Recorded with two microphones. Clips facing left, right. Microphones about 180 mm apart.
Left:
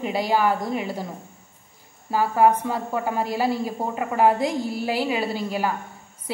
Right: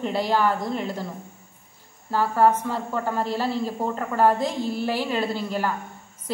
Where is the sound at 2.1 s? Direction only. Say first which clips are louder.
Left 1 dB; 10° left (ahead or behind).